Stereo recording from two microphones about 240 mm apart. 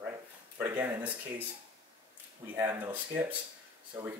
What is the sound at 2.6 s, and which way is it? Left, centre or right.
Speech, centre.